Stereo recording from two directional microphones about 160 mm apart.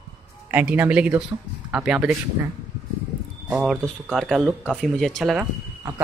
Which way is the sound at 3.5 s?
Centre (ahead or behind).